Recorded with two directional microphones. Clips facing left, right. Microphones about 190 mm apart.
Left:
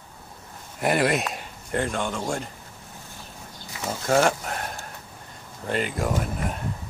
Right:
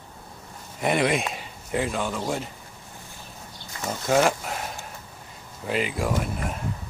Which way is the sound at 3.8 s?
Centre (ahead or behind).